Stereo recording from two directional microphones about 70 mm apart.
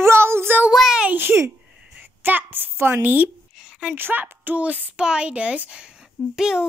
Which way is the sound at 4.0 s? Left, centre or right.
Right.